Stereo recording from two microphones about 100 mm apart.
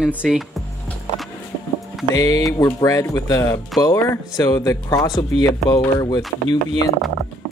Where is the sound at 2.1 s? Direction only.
30° left (ahead or behind).